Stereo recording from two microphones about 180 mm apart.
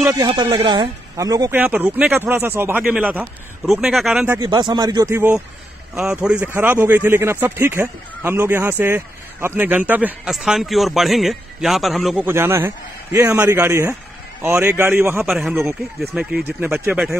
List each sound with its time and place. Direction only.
0.0 s speech: 20° right (ahead or behind)
1.6 s a man's voice: 10° right (ahead or behind)
4.4 s speech: 25° right (ahead or behind); by 12.3 s centre (ahead or behind)
12.3 s speech: 15° right (ahead or behind)
15.2 s a man's voice: centre (ahead or behind)